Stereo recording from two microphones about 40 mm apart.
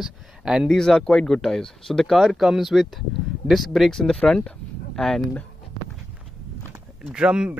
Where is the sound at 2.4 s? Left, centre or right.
Centre.